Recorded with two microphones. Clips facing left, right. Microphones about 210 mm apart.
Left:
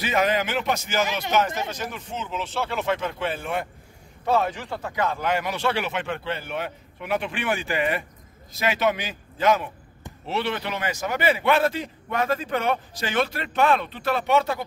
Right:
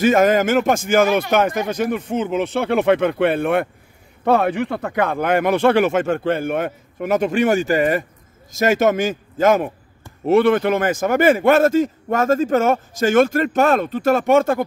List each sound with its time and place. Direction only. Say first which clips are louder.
0.0 s a man's voice: right 9 dB; 45° right (ahead or behind)